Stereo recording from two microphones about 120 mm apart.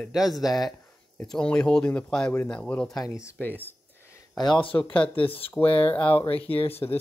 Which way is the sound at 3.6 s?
15° left (ahead or behind).